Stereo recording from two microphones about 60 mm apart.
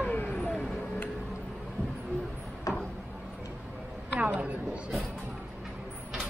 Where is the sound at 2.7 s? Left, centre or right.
Left.